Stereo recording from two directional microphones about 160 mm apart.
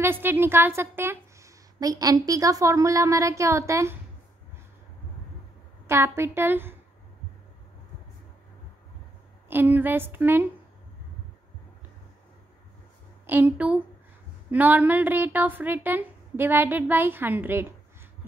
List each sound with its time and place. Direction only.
0.0 s a woman's voice: 15° right (ahead or behind)
5.9 s a woman's voice: 15° right (ahead or behind)
9.5 s a woman's voice: 10° right (ahead or behind)
13.3 s a woman's voice: 10° right (ahead or behind)